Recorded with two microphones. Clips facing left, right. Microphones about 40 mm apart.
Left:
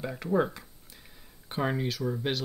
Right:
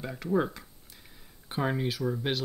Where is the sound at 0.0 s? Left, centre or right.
Centre.